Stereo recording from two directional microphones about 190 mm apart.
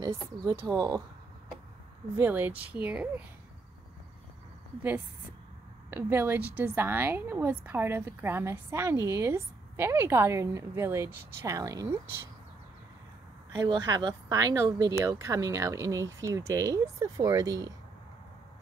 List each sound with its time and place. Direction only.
0.0 s speech: 20° right (ahead or behind)
2.1 s speech: 10° right (ahead or behind)
5.9 s speech: 10° right (ahead or behind)
13.6 s speech: 20° right (ahead or behind)